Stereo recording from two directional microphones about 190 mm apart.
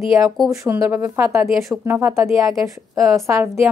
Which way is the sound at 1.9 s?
10° right (ahead or behind).